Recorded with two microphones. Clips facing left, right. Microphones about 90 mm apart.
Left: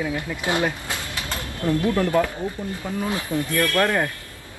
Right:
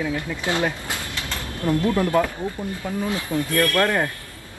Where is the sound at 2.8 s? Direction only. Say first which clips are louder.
Even; 20° left (ahead or behind).